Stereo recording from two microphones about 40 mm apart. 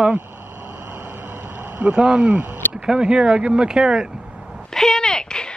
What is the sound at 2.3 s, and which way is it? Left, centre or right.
Speech, right.